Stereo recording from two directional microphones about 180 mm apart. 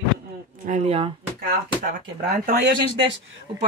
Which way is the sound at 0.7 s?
35° right (ahead or behind).